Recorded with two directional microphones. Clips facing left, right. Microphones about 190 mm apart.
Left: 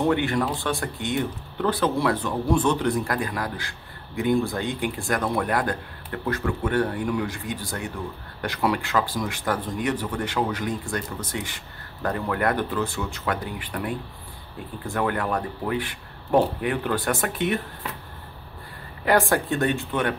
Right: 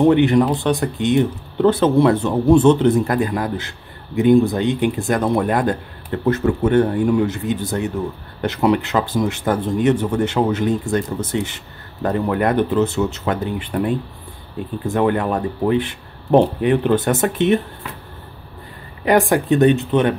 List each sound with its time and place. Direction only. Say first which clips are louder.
0.0 s speech: right 9 dB; 20° right (ahead or behind)
19.0 s speech: right 6 dB; 15° right (ahead or behind)